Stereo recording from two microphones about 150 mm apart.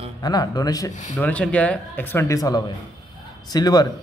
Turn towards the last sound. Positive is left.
turn(degrees=25)  # may be behind; listen again after turning